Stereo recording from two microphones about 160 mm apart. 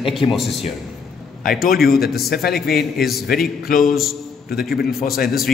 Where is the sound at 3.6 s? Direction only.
60° left (ahead or behind).